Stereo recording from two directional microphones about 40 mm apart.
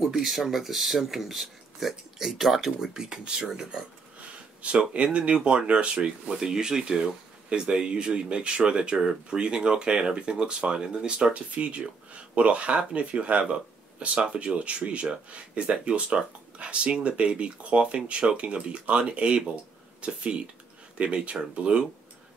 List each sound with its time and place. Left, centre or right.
0.0 s speech: centre
4.2 s a sound: right
4.9 s speech: right
6.3 s speech: centre